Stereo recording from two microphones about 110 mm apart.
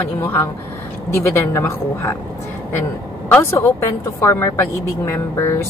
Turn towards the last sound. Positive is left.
turn(degrees=20)  # may be behind; listen again after turning